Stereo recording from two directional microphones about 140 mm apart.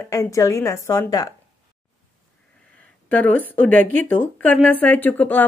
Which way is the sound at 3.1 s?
10° left (ahead or behind).